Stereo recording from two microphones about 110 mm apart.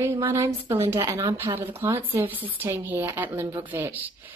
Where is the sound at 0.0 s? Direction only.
25° right (ahead or behind).